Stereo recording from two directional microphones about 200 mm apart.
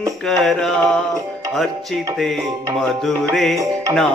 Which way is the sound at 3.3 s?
Centre (ahead or behind).